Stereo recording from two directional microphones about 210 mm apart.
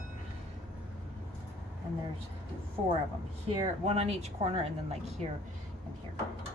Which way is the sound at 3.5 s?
30° right (ahead or behind).